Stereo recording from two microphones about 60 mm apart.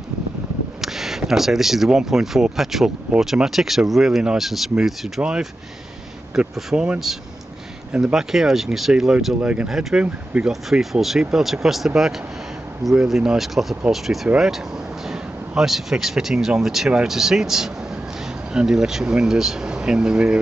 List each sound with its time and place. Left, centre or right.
0.7 s speech: centre
6.5 s speech: centre
9.4 s speech: right
9.7 s speech: centre